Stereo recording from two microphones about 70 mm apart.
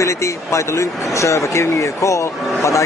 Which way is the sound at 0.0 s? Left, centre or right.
Left.